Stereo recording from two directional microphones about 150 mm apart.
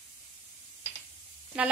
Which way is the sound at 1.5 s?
5° right (ahead or behind).